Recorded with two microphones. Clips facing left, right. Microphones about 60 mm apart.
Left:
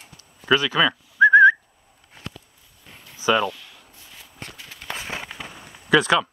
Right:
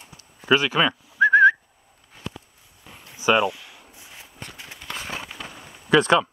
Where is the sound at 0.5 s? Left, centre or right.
Right.